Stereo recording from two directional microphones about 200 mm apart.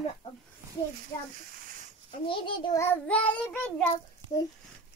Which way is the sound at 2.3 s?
15° left (ahead or behind).